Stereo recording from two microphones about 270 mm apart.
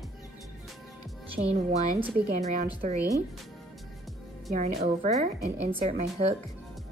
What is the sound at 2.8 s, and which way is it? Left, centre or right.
Speech, right.